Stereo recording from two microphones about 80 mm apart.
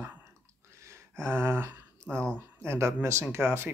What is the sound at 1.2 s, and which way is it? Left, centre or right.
Speech, right.